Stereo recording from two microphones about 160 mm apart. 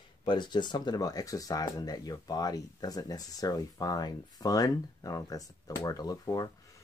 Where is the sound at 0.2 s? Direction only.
30° left (ahead or behind).